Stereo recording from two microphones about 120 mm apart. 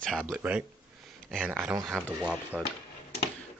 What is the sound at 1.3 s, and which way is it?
Speech, 15° right (ahead or behind).